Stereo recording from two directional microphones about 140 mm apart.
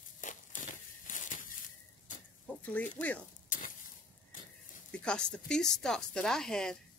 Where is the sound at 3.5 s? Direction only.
70° left (ahead or behind).